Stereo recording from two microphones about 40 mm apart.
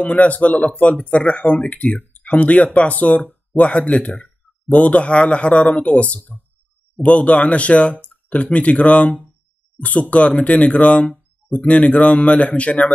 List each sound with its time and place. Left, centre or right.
0.0 s speech: left